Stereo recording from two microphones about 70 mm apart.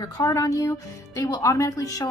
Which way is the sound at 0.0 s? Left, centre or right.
Left.